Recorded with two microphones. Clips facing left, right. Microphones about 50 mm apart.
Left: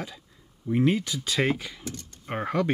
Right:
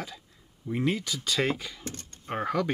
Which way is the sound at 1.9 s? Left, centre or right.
Right.